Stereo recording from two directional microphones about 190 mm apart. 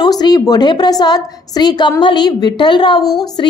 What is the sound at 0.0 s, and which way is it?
A woman's voice, 20° left (ahead or behind).